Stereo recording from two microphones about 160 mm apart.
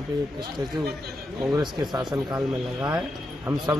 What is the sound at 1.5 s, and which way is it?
A man's voice, 25° right (ahead or behind).